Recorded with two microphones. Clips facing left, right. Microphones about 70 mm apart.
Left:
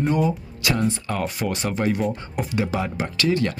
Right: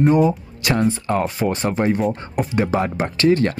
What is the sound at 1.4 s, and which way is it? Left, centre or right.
Speech, right.